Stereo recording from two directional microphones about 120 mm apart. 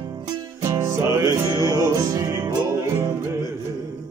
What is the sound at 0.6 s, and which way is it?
Music, 25° right (ahead or behind).